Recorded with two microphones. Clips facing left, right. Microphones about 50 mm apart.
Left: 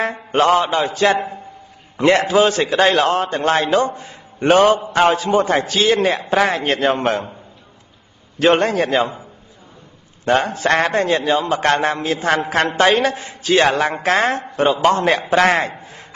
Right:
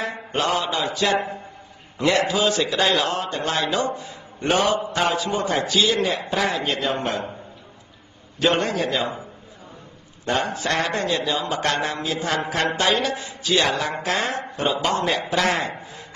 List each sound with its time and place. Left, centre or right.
0.0 s a man's voice: left
8.4 s a man's voice: left
10.2 s a man's voice: left
15.8 s a sound: left